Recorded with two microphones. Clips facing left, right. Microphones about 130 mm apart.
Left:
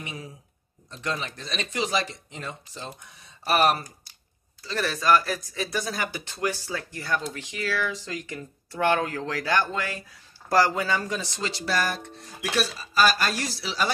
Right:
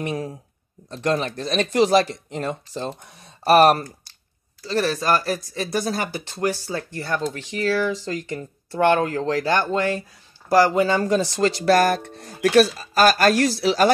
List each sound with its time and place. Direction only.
0.0 s speech: 50° right (ahead or behind)
4.6 s speech: 35° right (ahead or behind)
10.5 s speech: 20° right (ahead or behind); by 13.9 s 55° right (ahead or behind)